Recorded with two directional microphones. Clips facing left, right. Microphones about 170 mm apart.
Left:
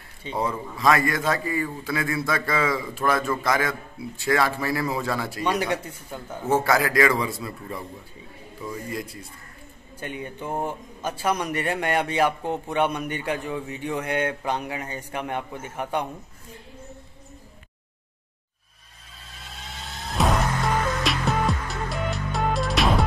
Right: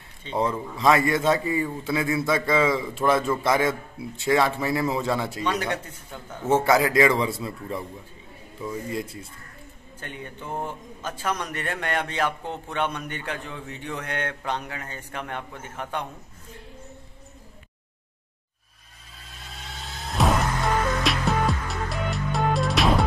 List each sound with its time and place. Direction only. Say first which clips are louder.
0.2 s a man's voice: right 2 dB; 10° left (ahead or behind)
0.5 s a man's voice: even; 25° right (ahead or behind)
5.4 s a man's voice: left 2 dB; 10° left (ahead or behind)
6.5 s a man's voice: right 2 dB; 20° right (ahead or behind)
8.9 s a man's voice: right 2 dB; 25° right (ahead or behind)
9.9 s a man's voice: left 5 dB; 10° left (ahead or behind)
20.2 s music: even; centre (ahead or behind)